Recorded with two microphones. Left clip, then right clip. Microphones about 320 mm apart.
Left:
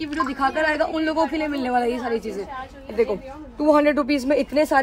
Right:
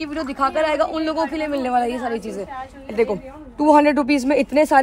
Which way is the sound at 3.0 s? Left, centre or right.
Right.